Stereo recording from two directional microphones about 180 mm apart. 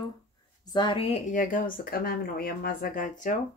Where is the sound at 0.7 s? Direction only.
30° left (ahead or behind).